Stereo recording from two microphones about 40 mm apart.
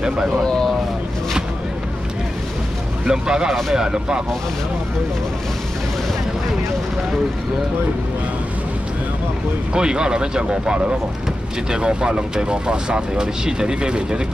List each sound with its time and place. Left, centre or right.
0.5 s vehicle: centre
3.1 s speech: centre
9.8 s speech: centre